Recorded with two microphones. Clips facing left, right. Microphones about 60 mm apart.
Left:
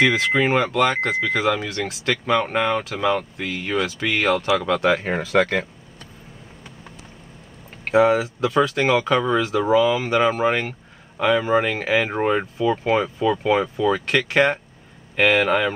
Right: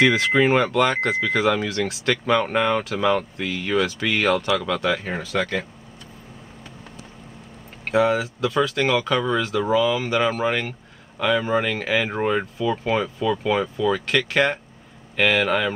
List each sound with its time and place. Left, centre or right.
0.0 s speech: centre
4.6 s speech: centre; by 5.7 s left
7.9 s speech: centre